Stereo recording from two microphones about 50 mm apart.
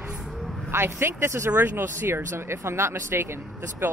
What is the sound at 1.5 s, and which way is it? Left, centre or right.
Speech, right.